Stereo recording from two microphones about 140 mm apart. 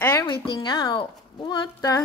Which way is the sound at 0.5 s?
30° left (ahead or behind).